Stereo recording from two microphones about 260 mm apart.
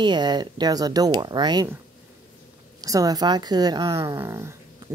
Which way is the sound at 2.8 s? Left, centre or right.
Centre.